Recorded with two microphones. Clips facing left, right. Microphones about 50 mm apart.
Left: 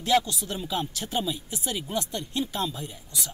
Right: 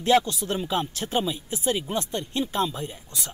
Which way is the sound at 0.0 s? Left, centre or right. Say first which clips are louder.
Right 3 dB; right.